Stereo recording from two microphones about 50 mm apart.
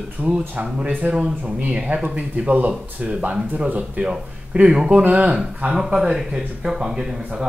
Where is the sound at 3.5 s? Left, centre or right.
Right.